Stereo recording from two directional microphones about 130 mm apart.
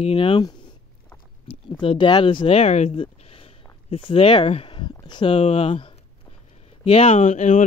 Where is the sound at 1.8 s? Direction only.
40° left (ahead or behind).